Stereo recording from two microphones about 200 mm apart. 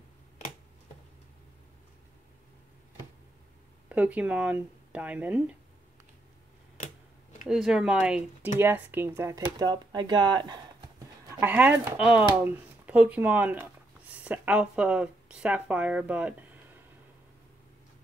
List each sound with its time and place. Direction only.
3.9 s speech: 5° right (ahead or behind)
7.4 s speech: centre (ahead or behind); by 10.6 s 20° right (ahead or behind)
11.3 s speech: 10° right (ahead or behind)